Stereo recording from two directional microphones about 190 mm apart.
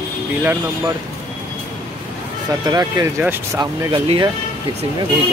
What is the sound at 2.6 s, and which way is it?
Speech, 20° right (ahead or behind).